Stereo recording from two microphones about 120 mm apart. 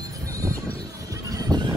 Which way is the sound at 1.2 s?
30° right (ahead or behind).